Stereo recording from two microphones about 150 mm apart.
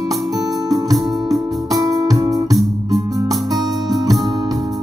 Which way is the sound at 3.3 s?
Centre (ahead or behind).